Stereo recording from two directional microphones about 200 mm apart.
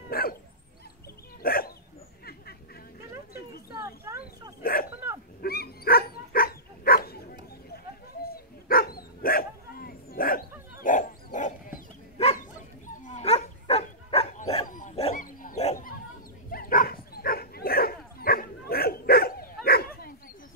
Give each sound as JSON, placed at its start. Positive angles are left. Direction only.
{"t": 0.1, "sound": "dog", "side_deg": 50}
{"t": 1.4, "sound": "dog", "side_deg": 45}
{"t": 2.2, "sound": "a sound", "side_deg": 50}
{"t": 3.8, "sound": "a sound", "side_deg": -15}
{"t": 4.6, "sound": "dog", "side_deg": 45}
{"t": 14.7, "sound": "bow-wow", "side_deg": 40}
{"t": 15.1, "sound": "dog", "side_deg": 40}